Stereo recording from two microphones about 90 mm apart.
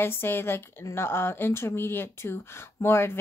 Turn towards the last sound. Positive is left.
turn(degrees=30)  # may be behind; listen again after turning